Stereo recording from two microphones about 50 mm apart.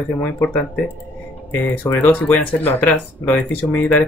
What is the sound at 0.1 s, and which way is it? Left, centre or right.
Speech, left.